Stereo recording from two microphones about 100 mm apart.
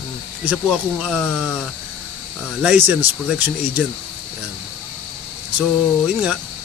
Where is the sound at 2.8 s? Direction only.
20° right (ahead or behind).